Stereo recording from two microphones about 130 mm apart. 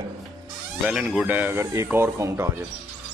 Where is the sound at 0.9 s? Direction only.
5° right (ahead or behind).